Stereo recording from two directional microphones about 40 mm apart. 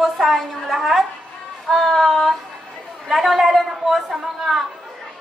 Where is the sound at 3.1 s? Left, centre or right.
Centre.